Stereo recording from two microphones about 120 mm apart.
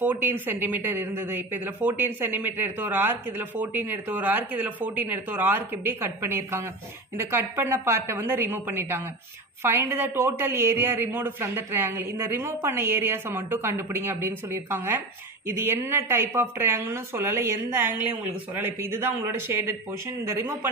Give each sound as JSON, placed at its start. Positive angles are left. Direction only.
{"t": 0.0, "sound": "a woman's voice", "side_deg": -15}